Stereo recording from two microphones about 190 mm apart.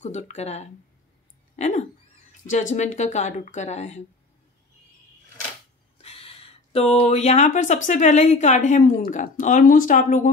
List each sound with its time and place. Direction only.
0.3 s speech: 35° left (ahead or behind)
5.9 s speech: 30° left (ahead or behind)